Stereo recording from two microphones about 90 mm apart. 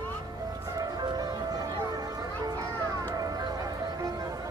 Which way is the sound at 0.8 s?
45° right (ahead or behind).